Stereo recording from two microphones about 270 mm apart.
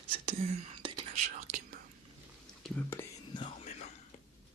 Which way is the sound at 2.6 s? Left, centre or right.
Centre.